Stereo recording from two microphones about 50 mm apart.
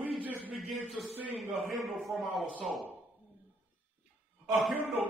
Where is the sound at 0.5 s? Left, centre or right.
Centre.